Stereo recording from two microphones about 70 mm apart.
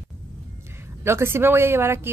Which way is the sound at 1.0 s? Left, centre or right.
Right.